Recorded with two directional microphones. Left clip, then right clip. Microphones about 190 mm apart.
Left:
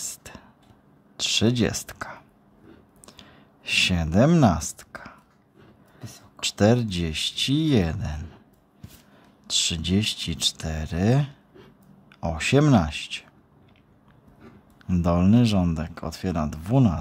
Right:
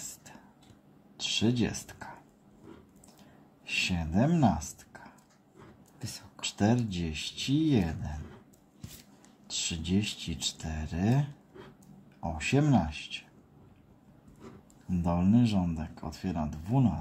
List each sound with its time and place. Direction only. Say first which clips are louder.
1.1 s a sound: left 7 dB; 45° left (ahead or behind)
3.2 s a sound: left 8 dB; 40° left (ahead or behind)
5.9 s whispering: right 1 dB; 25° right (ahead or behind)
6.4 s speech: left 9 dB; 40° left (ahead or behind)
9.5 s speech: left 9 dB; 40° left (ahead or behind)
14.9 s speech: left 7 dB; 45° left (ahead or behind)